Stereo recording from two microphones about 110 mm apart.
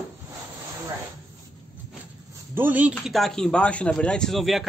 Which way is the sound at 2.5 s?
15° right (ahead or behind).